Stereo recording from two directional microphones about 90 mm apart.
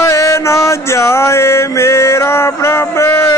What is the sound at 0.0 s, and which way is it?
Mantra, 35° left (ahead or behind).